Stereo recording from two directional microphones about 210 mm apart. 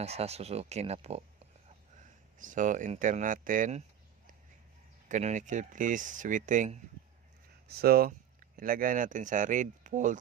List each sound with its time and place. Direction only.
0.0 s speech: 30° right (ahead or behind)
5.0 s speech: 35° right (ahead or behind)
7.6 s speech: 45° right (ahead or behind)